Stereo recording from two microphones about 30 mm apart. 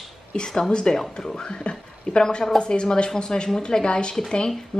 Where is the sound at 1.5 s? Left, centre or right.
Left.